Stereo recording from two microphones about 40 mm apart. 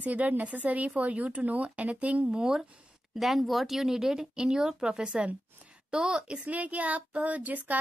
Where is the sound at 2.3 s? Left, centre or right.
Centre.